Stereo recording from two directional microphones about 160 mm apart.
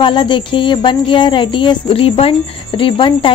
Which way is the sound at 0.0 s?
30° left (ahead or behind).